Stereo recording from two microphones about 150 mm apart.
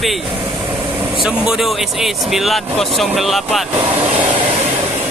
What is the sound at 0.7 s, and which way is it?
Vehicle, 35° right (ahead or behind).